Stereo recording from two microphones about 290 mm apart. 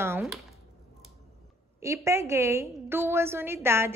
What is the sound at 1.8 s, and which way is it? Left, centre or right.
A woman's voice, centre.